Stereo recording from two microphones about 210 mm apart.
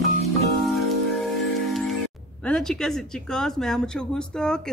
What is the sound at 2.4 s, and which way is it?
Speech, 5° left (ahead or behind).